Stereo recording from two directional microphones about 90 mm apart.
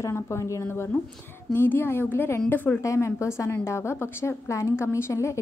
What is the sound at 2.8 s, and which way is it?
A woman's voice, 35° left (ahead or behind).